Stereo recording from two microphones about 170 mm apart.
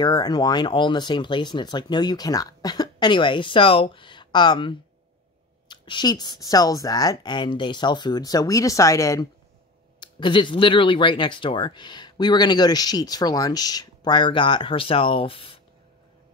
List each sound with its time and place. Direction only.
0.0 s speech: 25° left (ahead or behind)
9.9 s speech: 30° left (ahead or behind)